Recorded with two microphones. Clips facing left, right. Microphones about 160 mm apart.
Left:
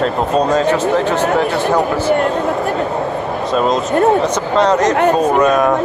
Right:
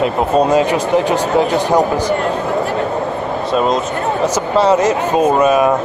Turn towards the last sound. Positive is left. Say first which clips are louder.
# right 1 dB
turn(degrees=-5)  # may be behind; listen again after turning